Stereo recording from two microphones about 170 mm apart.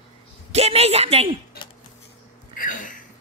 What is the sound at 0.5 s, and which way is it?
Speech, 35° right (ahead or behind).